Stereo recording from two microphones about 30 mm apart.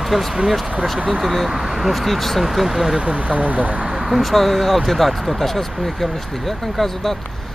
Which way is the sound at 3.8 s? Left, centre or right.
Centre.